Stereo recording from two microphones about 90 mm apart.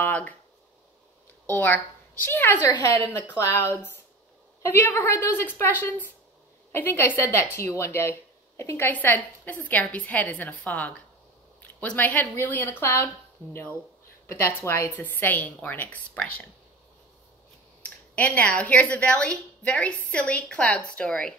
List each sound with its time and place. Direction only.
0.0 s a sound: 15° left (ahead or behind)
1.5 s a woman's voice: 20° left (ahead or behind)
3.3 s a woman's voice: 30° left (ahead or behind)
15.0 s speech: 20° left (ahead or behind)
17.8 s a woman's voice: 15° left (ahead or behind)